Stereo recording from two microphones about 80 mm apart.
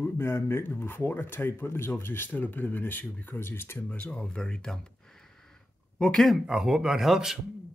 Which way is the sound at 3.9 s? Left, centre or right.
Centre.